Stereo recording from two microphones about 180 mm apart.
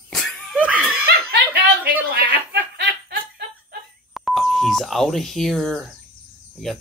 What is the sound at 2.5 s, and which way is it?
Snicker, 65° right (ahead or behind).